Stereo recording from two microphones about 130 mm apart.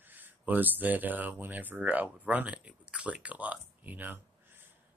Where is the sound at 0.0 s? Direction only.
15° right (ahead or behind).